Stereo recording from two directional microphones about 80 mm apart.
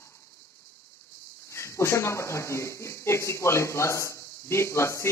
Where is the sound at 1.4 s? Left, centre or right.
Left.